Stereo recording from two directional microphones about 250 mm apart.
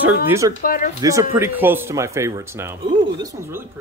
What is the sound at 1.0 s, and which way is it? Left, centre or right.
Speech, centre.